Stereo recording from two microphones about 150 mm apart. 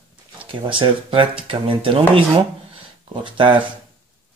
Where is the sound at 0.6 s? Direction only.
35° right (ahead or behind).